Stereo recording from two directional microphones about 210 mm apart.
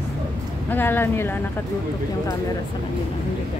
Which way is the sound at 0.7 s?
10° left (ahead or behind).